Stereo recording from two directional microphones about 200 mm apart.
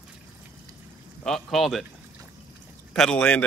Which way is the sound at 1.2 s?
Centre (ahead or behind).